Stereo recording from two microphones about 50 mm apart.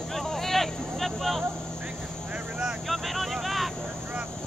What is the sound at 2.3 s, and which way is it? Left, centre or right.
Vehicle, centre.